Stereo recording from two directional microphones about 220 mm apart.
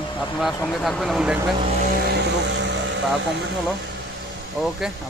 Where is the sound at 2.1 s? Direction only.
55° right (ahead or behind).